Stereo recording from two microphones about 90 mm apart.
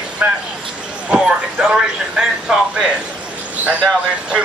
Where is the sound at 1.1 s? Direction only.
10° right (ahead or behind).